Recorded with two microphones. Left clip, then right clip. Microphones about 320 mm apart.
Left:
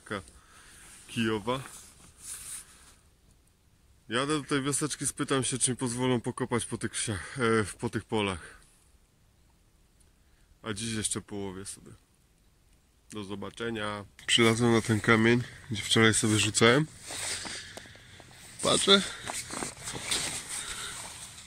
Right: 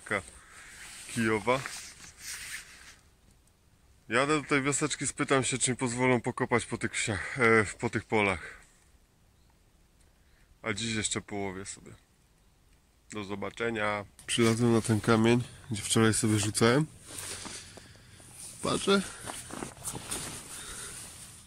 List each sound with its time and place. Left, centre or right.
0.0 s a sound: centre
1.1 s speech: centre
4.1 s speech: centre
10.6 s speech: centre
13.1 s speech: centre
17.5 s a sound: centre
18.6 s speech: centre